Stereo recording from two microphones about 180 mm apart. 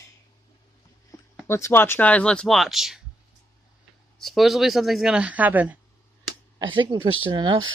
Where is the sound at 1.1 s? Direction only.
20° left (ahead or behind).